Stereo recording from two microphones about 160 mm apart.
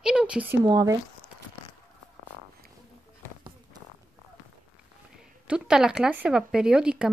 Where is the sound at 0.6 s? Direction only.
25° right (ahead or behind).